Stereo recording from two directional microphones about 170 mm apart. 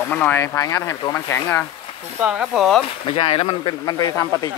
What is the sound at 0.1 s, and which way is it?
Speech, 10° left (ahead or behind).